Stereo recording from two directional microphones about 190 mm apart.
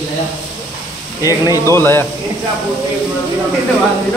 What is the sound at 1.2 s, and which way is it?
Speech, 20° left (ahead or behind).